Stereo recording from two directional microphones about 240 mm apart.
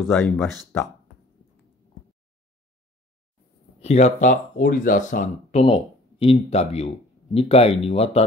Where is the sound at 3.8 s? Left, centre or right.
Left.